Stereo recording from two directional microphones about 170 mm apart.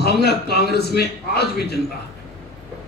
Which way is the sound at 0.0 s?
70° left (ahead or behind).